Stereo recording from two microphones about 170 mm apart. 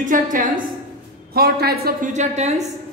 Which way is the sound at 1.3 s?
65° right (ahead or behind).